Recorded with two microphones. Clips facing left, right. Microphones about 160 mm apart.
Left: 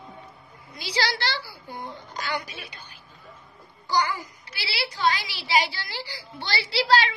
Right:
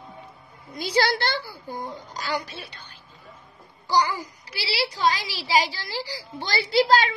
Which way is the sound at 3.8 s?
35° right (ahead or behind).